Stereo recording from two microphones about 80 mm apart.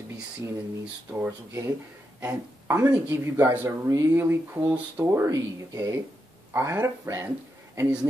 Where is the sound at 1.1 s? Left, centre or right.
Right.